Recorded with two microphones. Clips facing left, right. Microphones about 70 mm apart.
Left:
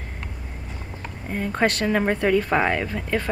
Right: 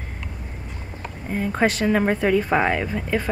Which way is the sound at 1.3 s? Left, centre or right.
Centre.